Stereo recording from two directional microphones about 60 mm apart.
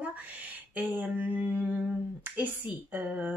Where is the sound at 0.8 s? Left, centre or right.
Right.